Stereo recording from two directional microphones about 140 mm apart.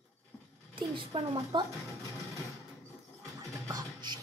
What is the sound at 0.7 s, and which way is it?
Speech, 40° right (ahead or behind).